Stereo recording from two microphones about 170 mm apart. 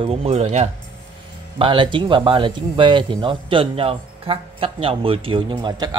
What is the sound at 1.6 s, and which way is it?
Speech, 30° right (ahead or behind).